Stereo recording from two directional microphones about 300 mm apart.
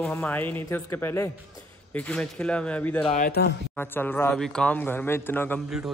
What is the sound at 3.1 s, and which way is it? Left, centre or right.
Speech, left.